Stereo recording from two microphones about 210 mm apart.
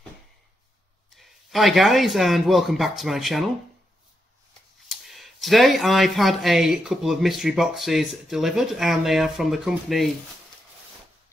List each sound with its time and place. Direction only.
1.1 s speech: centre (ahead or behind)
4.8 s speech: centre (ahead or behind)